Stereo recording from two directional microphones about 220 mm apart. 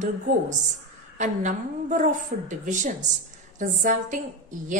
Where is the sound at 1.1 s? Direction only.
35° right (ahead or behind).